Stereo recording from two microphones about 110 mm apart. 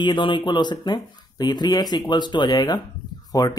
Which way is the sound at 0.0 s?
45° left (ahead or behind).